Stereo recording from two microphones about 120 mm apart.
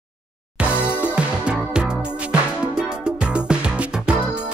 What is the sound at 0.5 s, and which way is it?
Music, 10° right (ahead or behind).